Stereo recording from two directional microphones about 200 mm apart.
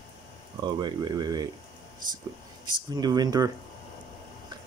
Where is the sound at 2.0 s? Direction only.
45° right (ahead or behind).